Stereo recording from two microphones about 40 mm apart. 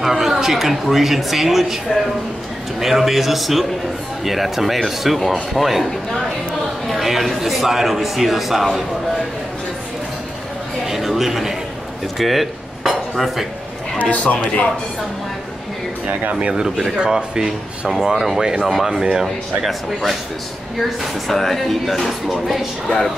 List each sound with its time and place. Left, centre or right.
0.0 s speech: centre
6.9 s speech: centre
10.9 s speech: centre
12.2 s dishes: centre
14.1 s speech: left
16.1 s speech: right
17.0 s speech: centre
18.7 s speech: centre
21.3 s speech: centre
22.3 s speech: centre